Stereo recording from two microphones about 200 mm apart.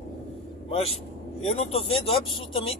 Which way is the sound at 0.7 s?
30° left (ahead or behind).